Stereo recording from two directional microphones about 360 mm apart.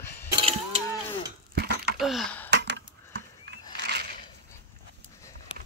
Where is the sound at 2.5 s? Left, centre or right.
Right.